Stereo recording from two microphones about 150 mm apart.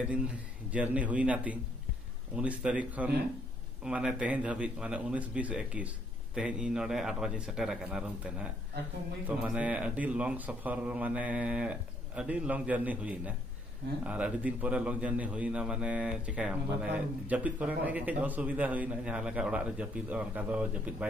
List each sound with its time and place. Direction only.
0.7 s a man's voice: 10° right (ahead or behind)